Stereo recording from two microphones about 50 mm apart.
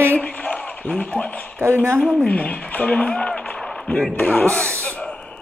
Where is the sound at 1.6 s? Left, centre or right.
Right.